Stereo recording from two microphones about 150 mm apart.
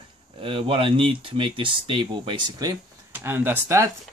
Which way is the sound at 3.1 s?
15° right (ahead or behind).